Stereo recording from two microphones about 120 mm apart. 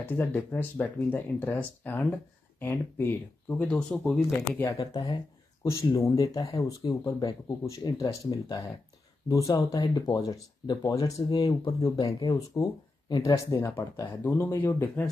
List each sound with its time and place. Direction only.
0.0 s speech: 15° left (ahead or behind)
4.6 s speech: 30° left (ahead or behind)
11.2 s speech: 40° left (ahead or behind)
11.6 s speech: 25° left (ahead or behind)